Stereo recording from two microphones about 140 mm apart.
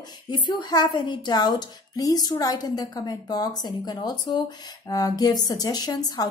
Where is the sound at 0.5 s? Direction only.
30° left (ahead or behind).